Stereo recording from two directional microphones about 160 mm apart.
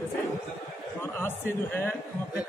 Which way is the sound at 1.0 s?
15° left (ahead or behind).